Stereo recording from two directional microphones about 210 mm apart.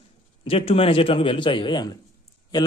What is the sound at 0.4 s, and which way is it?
Speech, 25° left (ahead or behind).